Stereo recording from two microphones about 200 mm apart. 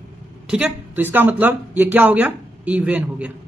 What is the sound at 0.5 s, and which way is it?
Speech, 5° right (ahead or behind).